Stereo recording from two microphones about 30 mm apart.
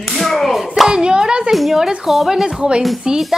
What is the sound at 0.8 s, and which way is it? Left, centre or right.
Hands, right.